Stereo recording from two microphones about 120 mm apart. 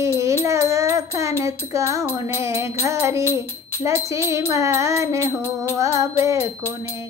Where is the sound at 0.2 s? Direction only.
25° right (ahead or behind).